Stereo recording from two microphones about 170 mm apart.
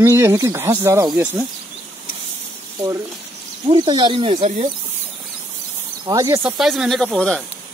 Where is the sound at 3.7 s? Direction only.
25° right (ahead or behind).